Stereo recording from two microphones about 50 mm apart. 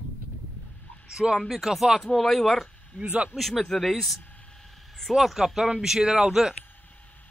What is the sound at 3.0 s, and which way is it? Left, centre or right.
Speech, right.